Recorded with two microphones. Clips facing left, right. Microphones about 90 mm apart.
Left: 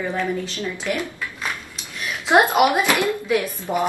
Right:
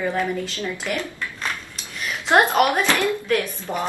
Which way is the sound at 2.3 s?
10° left (ahead or behind).